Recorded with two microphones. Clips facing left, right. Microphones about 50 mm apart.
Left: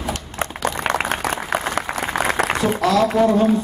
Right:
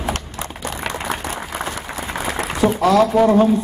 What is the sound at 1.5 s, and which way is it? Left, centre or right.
Applause, left.